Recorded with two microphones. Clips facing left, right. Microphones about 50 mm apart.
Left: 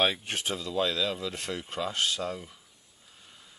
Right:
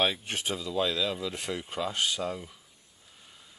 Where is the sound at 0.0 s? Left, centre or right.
Centre.